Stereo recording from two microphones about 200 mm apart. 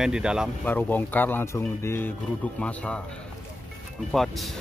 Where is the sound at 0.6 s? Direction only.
10° left (ahead or behind).